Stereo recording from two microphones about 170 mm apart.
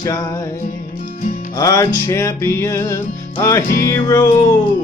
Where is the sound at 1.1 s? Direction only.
50° left (ahead or behind).